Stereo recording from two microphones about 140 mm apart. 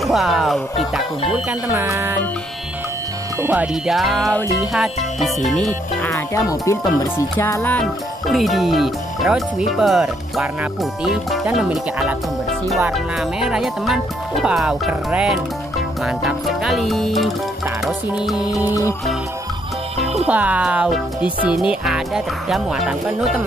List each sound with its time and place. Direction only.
0.0 s speech: centre (ahead or behind)
1.9 s music: 20° right (ahead or behind)
3.3 s speech: 15° right (ahead or behind)
3.6 s speech: 5° right (ahead or behind)
6.0 s speech: 20° left (ahead or behind)
7.8 s speech: centre (ahead or behind)
20.0 s music: 50° right (ahead or behind)
20.2 s speech: 10° right (ahead or behind)